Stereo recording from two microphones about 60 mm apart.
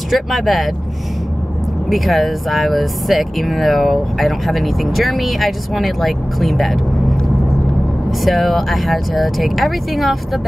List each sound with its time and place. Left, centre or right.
0.1 s speech: centre
1.9 s speech: centre
8.2 s speech: centre